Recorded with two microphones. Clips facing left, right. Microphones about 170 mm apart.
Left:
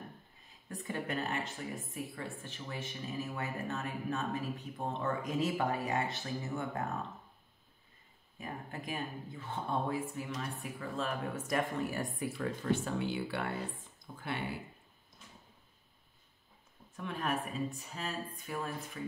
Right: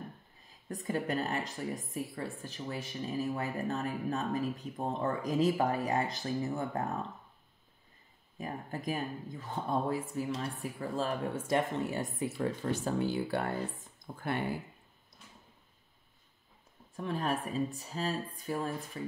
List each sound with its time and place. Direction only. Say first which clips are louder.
0.7 s speech: right 4 dB; 40° right (ahead or behind)
8.4 s speech: right 4 dB; 40° right (ahead or behind)
12.8 s speech: right 4 dB; 40° right (ahead or behind)
16.9 s speech: right 3 dB; 35° right (ahead or behind)